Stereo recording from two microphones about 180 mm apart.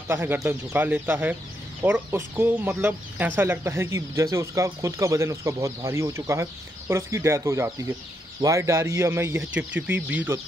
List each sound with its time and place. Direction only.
0.1 s speech: 10° right (ahead or behind)